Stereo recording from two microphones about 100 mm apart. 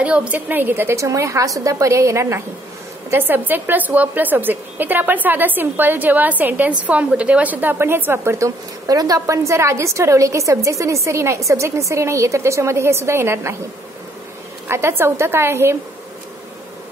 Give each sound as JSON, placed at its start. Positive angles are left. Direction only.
{"t": 0.0, "sound": "a woman's voice", "side_deg": -10}
{"t": 14.7, "sound": "a woman's voice", "side_deg": -25}